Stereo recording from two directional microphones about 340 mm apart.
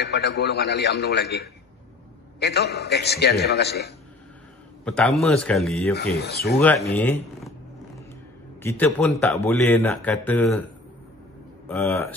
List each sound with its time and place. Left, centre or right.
0.0 s a man's voice: left
4.8 s a man's voice: centre
5.9 s a man's voice: left
6.6 s a man's voice: centre
8.6 s a man's voice: centre